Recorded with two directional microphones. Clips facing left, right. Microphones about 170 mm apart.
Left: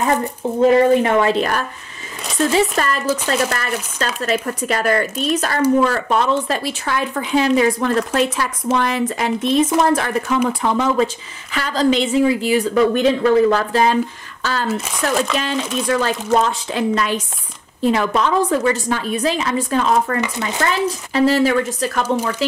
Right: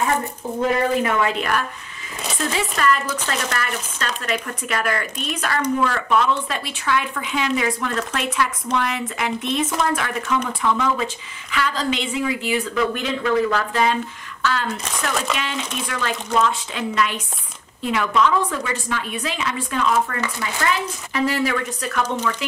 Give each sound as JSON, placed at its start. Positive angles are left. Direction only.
{"t": 0.6, "sound": "speech", "side_deg": 30}
{"t": 2.7, "sound": "speech", "side_deg": 35}
{"t": 14.7, "sound": "speech", "side_deg": 5}
{"t": 15.3, "sound": "speech", "side_deg": 35}
{"t": 20.2, "sound": "speech", "side_deg": 25}